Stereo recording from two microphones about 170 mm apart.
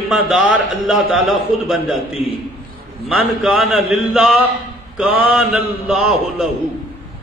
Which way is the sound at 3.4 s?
5° right (ahead or behind).